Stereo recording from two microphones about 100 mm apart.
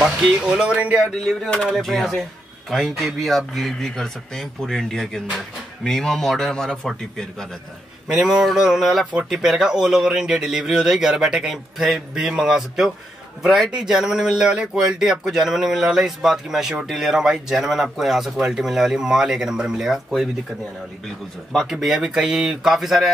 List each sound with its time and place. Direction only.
0.0 s speech: centre (ahead or behind)
1.2 s a man's voice: 5° left (ahead or behind)
21.5 s a man's voice: centre (ahead or behind)